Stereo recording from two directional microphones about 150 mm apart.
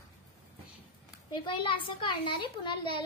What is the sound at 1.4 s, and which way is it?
A woman's voice, 35° left (ahead or behind).